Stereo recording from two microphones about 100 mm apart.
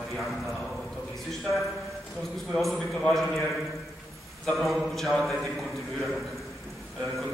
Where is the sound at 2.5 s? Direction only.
Centre (ahead or behind).